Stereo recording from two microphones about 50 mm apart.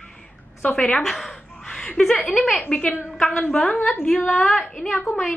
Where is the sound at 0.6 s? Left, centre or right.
Left.